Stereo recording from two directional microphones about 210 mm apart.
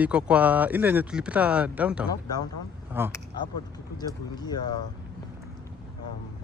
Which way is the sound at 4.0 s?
20° left (ahead or behind).